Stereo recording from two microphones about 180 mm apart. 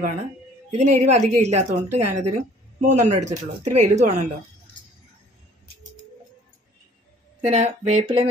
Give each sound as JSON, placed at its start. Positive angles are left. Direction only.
{"t": 0.7, "sound": "a woman's voice", "side_deg": -40}
{"t": 7.4, "sound": "a woman's voice", "side_deg": -40}